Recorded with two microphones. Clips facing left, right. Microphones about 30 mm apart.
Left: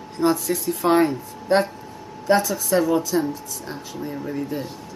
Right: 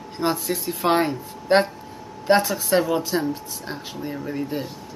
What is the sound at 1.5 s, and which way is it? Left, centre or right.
Speech, right.